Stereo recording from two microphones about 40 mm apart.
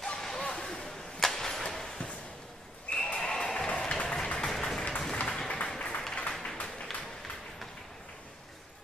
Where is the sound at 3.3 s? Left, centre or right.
Centre.